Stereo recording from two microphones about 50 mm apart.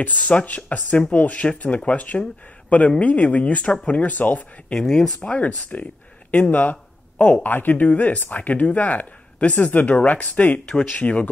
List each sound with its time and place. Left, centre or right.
0.0 s speech: left
4.7 s speech: centre
5.2 s speech: left
6.5 s a sound: left
7.4 s speech: left